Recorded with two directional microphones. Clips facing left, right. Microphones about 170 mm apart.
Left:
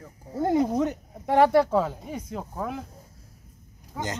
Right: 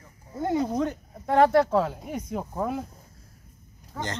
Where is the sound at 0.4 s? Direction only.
25° left (ahead or behind).